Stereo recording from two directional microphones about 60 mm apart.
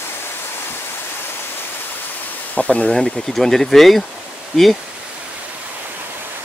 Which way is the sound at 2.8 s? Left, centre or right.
Centre.